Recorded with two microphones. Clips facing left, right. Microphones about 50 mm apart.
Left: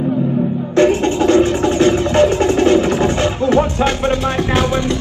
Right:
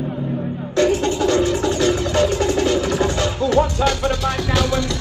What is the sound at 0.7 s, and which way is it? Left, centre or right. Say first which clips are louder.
Music: left 4 dB; left.